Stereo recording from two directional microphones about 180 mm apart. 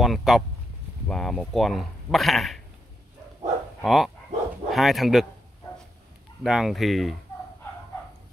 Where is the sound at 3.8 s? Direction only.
Centre (ahead or behind).